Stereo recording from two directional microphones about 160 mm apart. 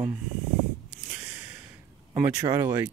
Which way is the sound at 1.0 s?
10° right (ahead or behind).